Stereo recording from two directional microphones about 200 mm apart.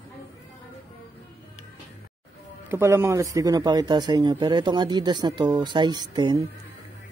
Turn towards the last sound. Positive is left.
turn(degrees=-20)  # may be behind; listen again after turning